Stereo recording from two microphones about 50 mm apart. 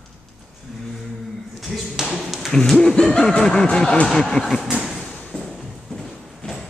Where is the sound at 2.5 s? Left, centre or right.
Centre.